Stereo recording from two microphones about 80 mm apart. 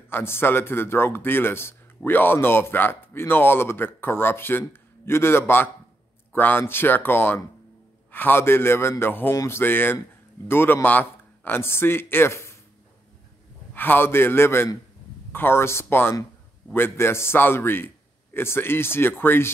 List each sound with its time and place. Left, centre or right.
0.1 s speech: left
13.7 s speech: left